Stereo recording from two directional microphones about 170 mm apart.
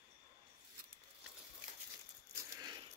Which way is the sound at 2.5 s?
25° right (ahead or behind).